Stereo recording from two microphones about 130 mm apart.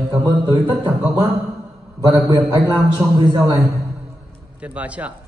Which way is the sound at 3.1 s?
30° right (ahead or behind).